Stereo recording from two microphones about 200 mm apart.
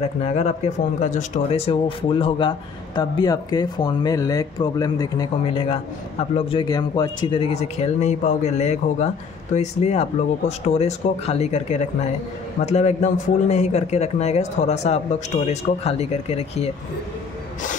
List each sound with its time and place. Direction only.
0.0 s a man's voice: 35° left (ahead or behind)